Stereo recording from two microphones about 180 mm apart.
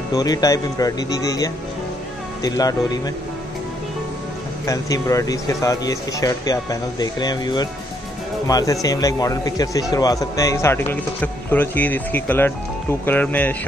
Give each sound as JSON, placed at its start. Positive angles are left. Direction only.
{"t": 0.1, "sound": "speech", "side_deg": 20}
{"t": 4.6, "sound": "a man's voice", "side_deg": 20}